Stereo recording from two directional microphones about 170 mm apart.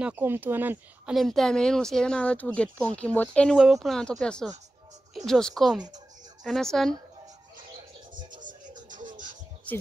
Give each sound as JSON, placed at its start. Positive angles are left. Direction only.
{"t": 0.0, "sound": "speech", "side_deg": -10}
{"t": 1.1, "sound": "speech", "side_deg": 0}
{"t": 8.3, "sound": "music", "side_deg": -50}